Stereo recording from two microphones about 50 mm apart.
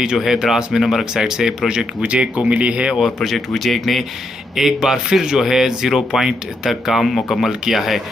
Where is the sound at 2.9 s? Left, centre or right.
Centre.